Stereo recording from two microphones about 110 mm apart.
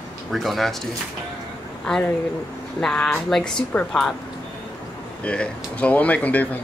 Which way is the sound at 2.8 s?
5° left (ahead or behind).